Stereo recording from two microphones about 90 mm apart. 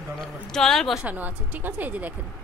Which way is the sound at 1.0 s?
20° right (ahead or behind).